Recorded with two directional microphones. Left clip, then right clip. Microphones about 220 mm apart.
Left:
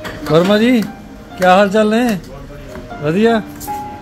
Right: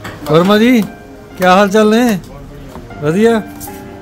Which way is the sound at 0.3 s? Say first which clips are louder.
Right 2 dB; 25° right (ahead or behind).